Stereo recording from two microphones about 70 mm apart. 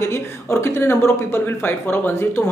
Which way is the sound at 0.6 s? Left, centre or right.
Left.